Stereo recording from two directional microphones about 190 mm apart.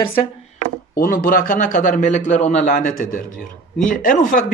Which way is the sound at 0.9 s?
50° left (ahead or behind).